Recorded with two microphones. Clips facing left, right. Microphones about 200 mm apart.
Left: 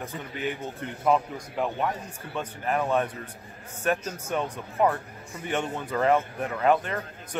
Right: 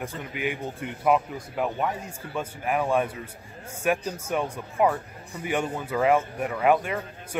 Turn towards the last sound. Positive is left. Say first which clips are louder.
# right 1 dB
turn(degrees=-10)  # may be behind; listen again after turning